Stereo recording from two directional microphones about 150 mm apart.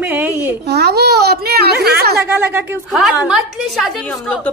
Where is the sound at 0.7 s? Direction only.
90° right.